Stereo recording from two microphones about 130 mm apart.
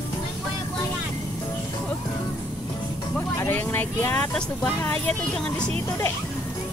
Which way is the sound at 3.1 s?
20° left (ahead or behind).